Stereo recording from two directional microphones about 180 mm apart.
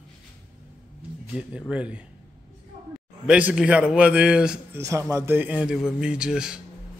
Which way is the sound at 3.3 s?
5° right (ahead or behind).